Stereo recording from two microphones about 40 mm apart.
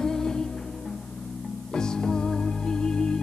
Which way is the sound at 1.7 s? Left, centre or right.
Centre.